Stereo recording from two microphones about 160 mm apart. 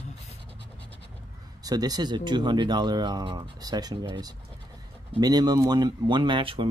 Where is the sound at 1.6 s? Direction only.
25° right (ahead or behind).